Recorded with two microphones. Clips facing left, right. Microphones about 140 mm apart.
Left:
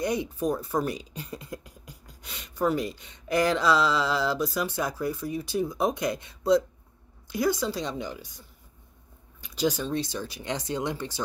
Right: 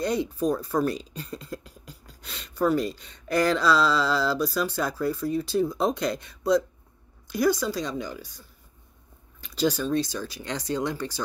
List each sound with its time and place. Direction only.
0.0 s speech: 20° left (ahead or behind)